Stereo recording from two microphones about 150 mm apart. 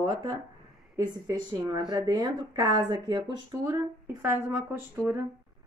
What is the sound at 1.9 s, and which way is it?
Speech, 25° right (ahead or behind).